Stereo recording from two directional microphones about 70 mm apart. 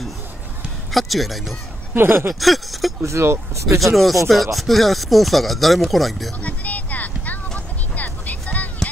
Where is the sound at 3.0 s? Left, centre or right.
Right.